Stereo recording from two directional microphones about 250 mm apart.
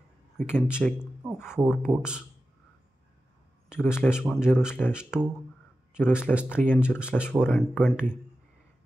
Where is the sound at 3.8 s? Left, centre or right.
Centre.